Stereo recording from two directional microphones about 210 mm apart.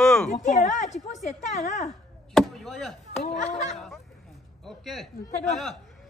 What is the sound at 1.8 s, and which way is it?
Chop, centre (ahead or behind).